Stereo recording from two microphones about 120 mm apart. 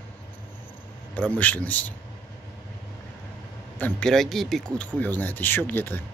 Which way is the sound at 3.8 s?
10° left (ahead or behind).